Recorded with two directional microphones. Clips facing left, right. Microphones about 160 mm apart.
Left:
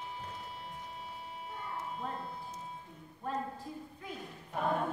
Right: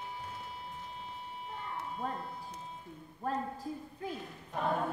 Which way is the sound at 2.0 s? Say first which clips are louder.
Right 4 dB; 40° right (ahead or behind).